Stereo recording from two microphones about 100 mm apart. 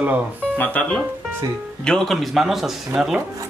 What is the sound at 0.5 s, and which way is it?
Speech, 15° left (ahead or behind).